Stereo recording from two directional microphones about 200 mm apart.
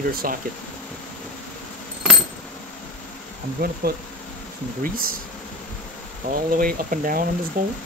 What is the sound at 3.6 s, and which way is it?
Speech, 50° right (ahead or behind).